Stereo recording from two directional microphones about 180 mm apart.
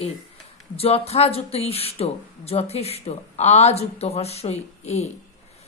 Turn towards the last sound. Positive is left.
turn(degrees=35)  # may be behind; listen again after turning